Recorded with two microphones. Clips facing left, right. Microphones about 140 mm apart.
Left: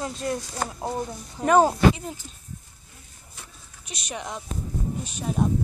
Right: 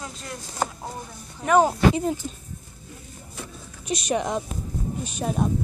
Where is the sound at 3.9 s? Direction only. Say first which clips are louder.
Right 10 dB; 45° right (ahead or behind).